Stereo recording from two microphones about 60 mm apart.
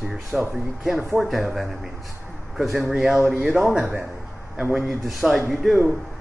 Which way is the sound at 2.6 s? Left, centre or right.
Centre.